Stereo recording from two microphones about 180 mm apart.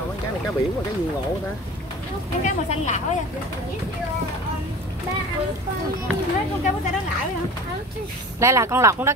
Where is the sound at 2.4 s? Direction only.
40° left (ahead or behind).